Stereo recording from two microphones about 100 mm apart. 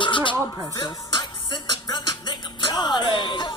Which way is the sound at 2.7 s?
50° left (ahead or behind).